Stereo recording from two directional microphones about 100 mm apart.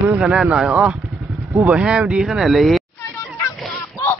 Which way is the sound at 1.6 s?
10° right (ahead or behind).